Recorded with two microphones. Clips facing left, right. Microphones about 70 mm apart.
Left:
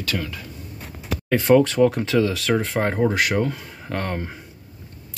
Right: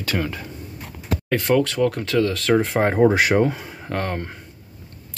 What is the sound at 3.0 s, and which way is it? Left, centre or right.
Speech, right.